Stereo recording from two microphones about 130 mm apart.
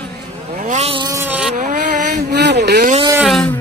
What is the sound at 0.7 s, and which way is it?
Vehicle, 55° right (ahead or behind).